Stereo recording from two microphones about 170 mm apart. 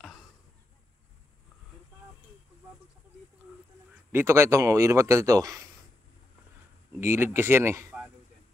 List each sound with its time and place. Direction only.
4.1 s speech: 15° right (ahead or behind)
7.0 s speech: 15° right (ahead or behind)